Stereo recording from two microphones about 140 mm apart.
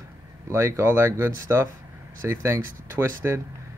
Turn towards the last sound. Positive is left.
turn(degrees=-15)  # may be behind; listen again after turning